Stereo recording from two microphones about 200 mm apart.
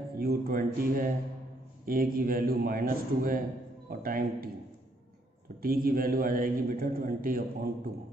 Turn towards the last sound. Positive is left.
turn(degrees=-45)  # may be behind; listen again after turning